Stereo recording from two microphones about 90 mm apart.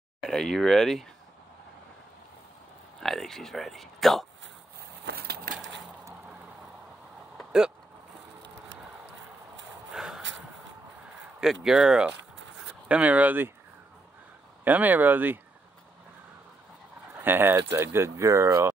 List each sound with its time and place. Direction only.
0.3 s speech: 5° left (ahead or behind)
3.0 s speech: 5° left (ahead or behind)
9.9 s a sound: 5° right (ahead or behind)
11.4 s speech: 5° right (ahead or behind)
14.6 s speech: 20° right (ahead or behind)
17.1 s speech: 25° right (ahead or behind)